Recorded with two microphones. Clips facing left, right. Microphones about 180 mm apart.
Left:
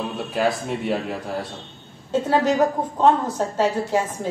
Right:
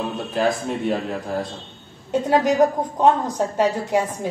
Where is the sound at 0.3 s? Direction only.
10° left (ahead or behind).